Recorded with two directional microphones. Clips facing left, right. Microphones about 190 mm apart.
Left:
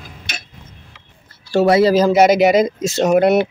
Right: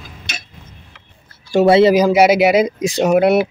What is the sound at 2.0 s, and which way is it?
Speech, 10° right (ahead or behind).